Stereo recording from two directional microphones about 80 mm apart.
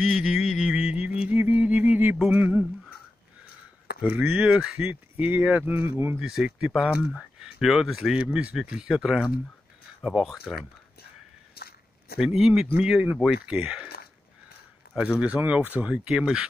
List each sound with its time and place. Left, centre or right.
0.0 s music: centre
4.1 s speech: centre
4.8 s speech: right
5.7 s speech: right
6.1 s speech: centre
12.2 s speech: centre
15.1 s speech: centre